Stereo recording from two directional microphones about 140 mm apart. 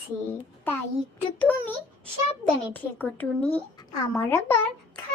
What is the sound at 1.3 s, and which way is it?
A woman's voice, 10° left (ahead or behind).